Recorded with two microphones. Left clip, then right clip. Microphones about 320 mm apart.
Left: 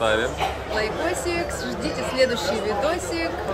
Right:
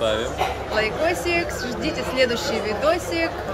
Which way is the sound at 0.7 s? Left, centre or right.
Centre.